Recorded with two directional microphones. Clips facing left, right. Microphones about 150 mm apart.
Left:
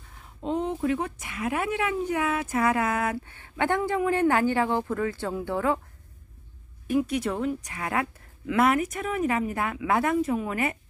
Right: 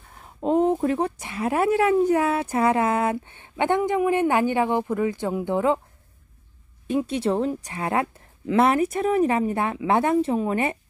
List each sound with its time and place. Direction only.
0.1 s speech: 45° right (ahead or behind); by 5.8 s 20° right (ahead or behind)
6.9 s speech: 30° right (ahead or behind)